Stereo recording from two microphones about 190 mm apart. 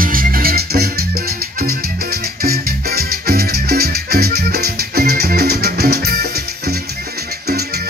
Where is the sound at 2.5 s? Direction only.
55° right (ahead or behind).